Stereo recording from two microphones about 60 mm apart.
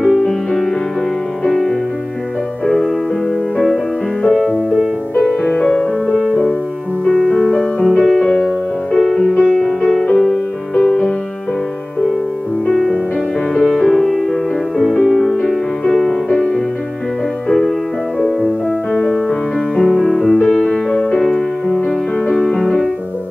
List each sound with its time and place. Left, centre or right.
0.2 s music: centre
5.4 s music: centre
12.6 s music: centre
18.9 s music: centre
20.9 s music: centre
21.2 s music: centre